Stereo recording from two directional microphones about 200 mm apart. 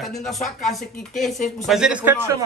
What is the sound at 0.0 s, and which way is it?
A man's voice, centre (ahead or behind).